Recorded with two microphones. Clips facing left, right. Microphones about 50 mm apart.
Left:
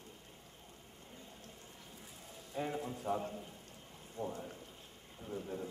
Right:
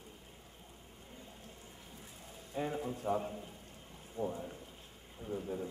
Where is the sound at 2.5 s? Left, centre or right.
Centre.